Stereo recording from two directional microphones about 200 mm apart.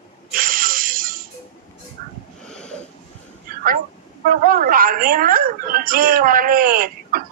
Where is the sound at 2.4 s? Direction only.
5° left (ahead or behind).